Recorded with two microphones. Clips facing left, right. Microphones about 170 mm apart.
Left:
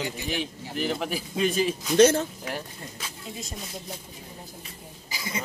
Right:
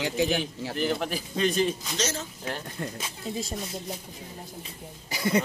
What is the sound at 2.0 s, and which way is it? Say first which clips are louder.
Speech: left 16 dB; 55° left (ahead or behind).